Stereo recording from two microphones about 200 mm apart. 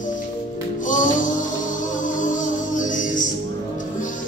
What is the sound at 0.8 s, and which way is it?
Music, 40° left (ahead or behind).